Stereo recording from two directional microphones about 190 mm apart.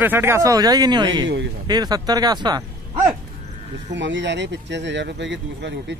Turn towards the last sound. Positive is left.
turn(degrees=-70)  # may be behind; listen again after turning